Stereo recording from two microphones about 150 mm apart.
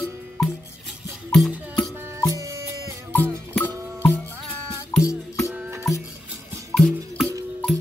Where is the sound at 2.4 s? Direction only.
25° right (ahead or behind).